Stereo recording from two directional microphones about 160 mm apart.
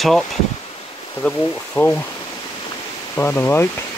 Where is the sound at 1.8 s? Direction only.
20° left (ahead or behind).